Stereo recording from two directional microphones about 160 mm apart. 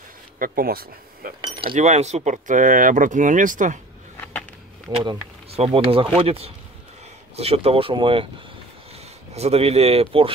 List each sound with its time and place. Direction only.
0.4 s speech: 70° right (ahead or behind)
1.4 s cutlery: 30° right (ahead or behind)
1.8 s speech: 45° right (ahead or behind)
4.9 s speech: 35° right (ahead or behind)